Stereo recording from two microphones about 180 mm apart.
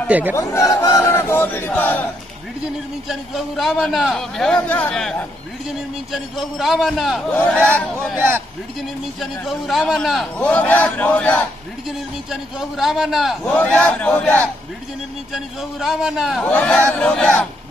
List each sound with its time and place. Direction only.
0.1 s a man's voice: 10° right (ahead or behind)
0.4 s a man's voice: 15° left (ahead or behind)
1.0 s a sound: 15° left (ahead or behind)
3.1 s a man's voice: centre (ahead or behind)
6.1 s a man's voice: centre (ahead or behind)
9.2 s a man's voice: centre (ahead or behind)